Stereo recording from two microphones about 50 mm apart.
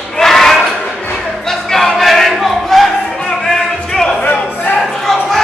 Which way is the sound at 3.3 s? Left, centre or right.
Centre.